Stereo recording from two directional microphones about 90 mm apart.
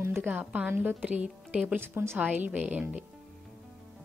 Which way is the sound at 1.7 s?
25° right (ahead or behind).